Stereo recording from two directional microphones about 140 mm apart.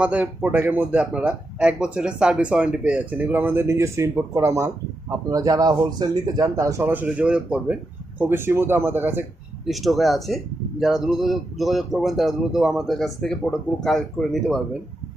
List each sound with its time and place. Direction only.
0.0 s speech: 10° right (ahead or behind)
9.7 s speech: centre (ahead or behind)